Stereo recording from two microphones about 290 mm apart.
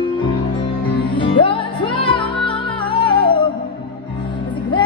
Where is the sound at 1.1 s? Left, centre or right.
Centre.